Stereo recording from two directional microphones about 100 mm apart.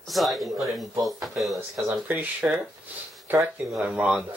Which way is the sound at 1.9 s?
15° right (ahead or behind).